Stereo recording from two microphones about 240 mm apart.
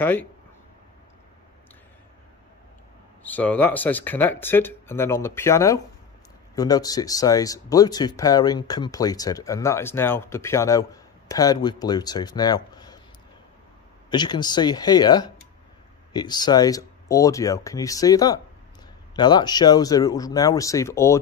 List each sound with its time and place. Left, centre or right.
0.0 s speech: centre
3.3 s speech: centre
14.1 s speech: centre